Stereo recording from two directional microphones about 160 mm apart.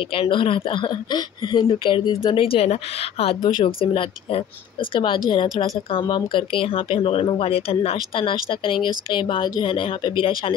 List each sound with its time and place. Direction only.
0.1 s speech: 35° left (ahead or behind)